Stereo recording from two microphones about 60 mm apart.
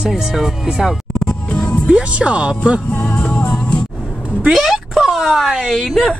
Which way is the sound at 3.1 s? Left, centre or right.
Left.